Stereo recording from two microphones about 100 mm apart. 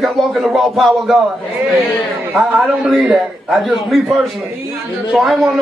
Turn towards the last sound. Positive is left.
turn(degrees=0)  # may be behind; listen again after turning